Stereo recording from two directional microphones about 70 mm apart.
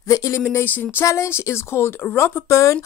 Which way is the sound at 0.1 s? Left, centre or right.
Left.